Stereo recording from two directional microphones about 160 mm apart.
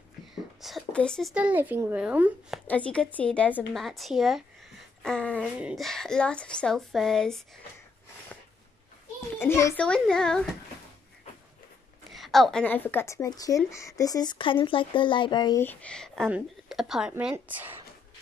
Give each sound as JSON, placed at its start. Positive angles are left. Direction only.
{"t": 0.6, "sound": "whispering", "side_deg": 0}
{"t": 1.3, "sound": "a woman's voice", "side_deg": -10}
{"t": 2.6, "sound": "speech", "side_deg": 10}
{"t": 5.4, "sound": "speech", "side_deg": -5}
{"t": 9.4, "sound": "speech", "side_deg": 15}
{"t": 9.8, "sound": "speech", "side_deg": 5}
{"t": 12.1, "sound": "speech", "side_deg": 0}
{"t": 15.6, "sound": "a woman's voice", "side_deg": 10}